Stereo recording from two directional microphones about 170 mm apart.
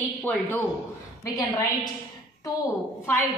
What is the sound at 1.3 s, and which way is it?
Speech, 20° left (ahead or behind).